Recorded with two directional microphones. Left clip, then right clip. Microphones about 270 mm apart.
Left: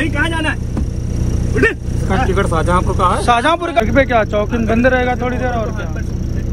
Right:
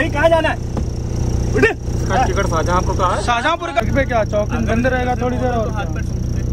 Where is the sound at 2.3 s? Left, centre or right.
Centre.